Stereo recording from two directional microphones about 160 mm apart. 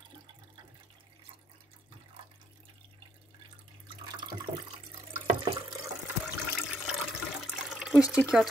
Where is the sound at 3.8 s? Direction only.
30° right (ahead or behind).